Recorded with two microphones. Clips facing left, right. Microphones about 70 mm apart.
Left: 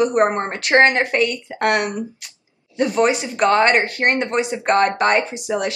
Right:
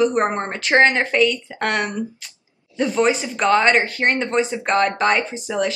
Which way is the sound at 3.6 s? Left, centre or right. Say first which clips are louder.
Left 1 dB; left.